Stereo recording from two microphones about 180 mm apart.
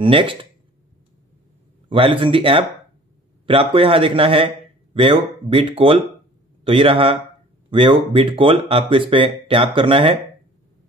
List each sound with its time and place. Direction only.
0.0 s speech: 30° right (ahead or behind)
1.9 s speech: 30° right (ahead or behind)